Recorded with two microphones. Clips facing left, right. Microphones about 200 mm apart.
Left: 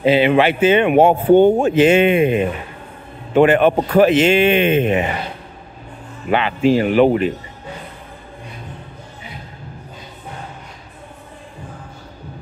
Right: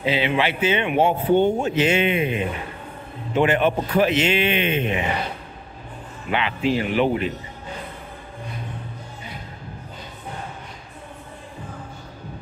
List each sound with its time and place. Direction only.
0.0 s speech: 50° left (ahead or behind)
6.3 s speech: 45° left (ahead or behind)